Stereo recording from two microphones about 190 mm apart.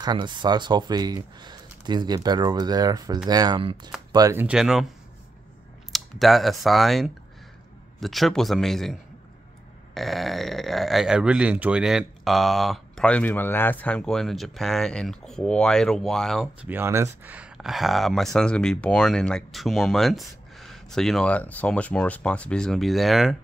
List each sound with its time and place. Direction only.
0.0 s speech: 25° right (ahead or behind); by 4.8 s 5° right (ahead or behind)
5.9 s speech: centre (ahead or behind)
9.9 s speech: centre (ahead or behind)
16.6 s speech: 10° right (ahead or behind)